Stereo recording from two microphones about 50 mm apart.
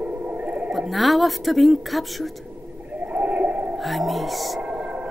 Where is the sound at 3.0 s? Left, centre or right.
Right.